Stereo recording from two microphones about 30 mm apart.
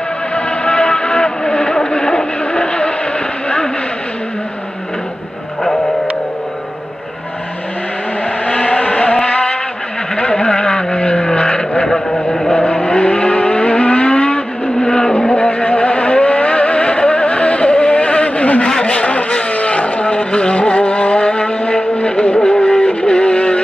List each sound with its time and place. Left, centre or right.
0.3 s vehicle: left
8.5 s vehicle: left
10.1 s vehicle: left
11.0 s vehicle: left
12.1 s vehicle: centre
12.5 s vehicle: left
14.8 s vehicle: left
15.1 s vehicle: left